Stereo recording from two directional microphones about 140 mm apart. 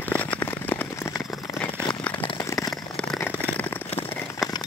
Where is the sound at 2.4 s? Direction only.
20° left (ahead or behind).